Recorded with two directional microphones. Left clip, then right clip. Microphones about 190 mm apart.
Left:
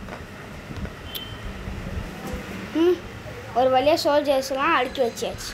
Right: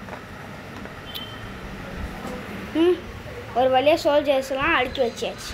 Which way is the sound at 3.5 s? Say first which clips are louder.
Even; 5° left (ahead or behind).